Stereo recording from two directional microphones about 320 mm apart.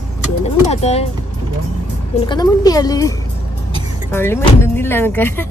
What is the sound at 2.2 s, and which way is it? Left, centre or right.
Speech, centre.